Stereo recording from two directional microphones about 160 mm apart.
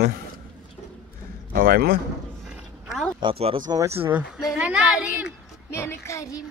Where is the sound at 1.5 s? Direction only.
65° right (ahead or behind).